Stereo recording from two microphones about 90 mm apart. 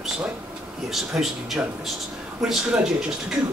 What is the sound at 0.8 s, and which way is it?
Speech, 5° right (ahead or behind).